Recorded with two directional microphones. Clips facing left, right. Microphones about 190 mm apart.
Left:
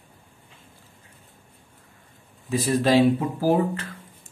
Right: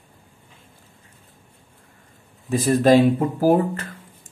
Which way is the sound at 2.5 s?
45° right (ahead or behind).